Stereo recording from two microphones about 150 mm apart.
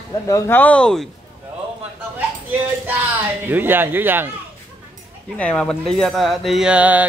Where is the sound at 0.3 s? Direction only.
15° left (ahead or behind).